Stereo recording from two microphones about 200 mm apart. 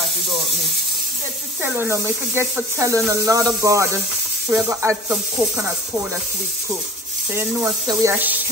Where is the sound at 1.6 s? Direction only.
10° right (ahead or behind).